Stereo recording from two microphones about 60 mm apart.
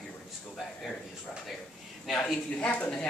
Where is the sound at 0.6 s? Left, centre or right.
Centre.